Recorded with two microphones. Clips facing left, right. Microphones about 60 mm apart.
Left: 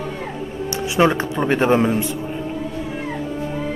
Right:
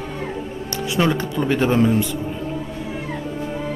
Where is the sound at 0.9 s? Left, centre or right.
Left.